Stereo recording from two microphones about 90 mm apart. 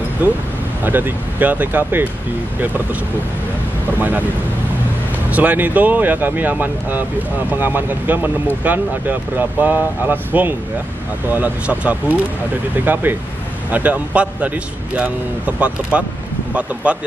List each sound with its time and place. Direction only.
0.2 s speech: 20° right (ahead or behind)
5.3 s speech: 20° right (ahead or behind)